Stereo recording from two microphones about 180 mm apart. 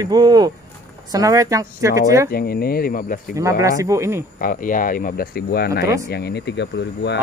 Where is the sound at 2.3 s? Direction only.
60° left (ahead or behind).